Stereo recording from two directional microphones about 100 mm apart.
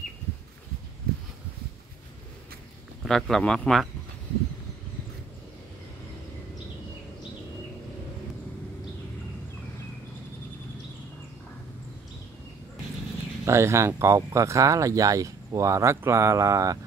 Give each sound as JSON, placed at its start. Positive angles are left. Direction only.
{"t": 3.1, "sound": "speech", "side_deg": 5}
{"t": 13.5, "sound": "speech", "side_deg": -30}